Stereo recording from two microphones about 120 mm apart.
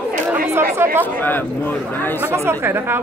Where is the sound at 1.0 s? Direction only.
15° left (ahead or behind).